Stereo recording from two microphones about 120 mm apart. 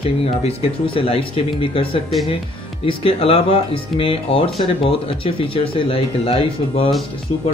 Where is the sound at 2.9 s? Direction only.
50° left (ahead or behind).